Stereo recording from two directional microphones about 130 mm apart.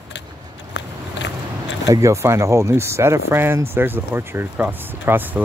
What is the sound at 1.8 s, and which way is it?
Speech, 25° right (ahead or behind).